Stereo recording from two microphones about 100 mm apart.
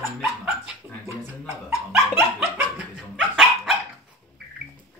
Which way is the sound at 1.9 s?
25° right (ahead or behind).